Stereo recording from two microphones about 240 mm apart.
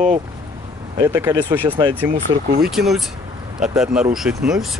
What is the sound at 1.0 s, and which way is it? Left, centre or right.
Speech, centre.